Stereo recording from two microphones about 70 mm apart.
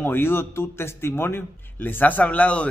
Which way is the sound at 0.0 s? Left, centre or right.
Left.